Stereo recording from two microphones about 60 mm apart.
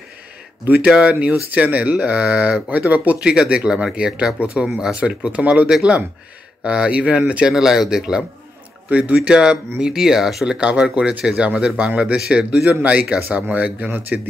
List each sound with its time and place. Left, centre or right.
0.8 s speech: centre
5.0 s speech: centre
7.5 s speech: centre
8.8 s speech: right